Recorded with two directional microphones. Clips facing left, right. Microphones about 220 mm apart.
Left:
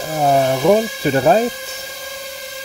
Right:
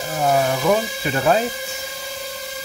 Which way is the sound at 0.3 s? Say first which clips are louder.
Left 5 dB; 30° left (ahead or behind).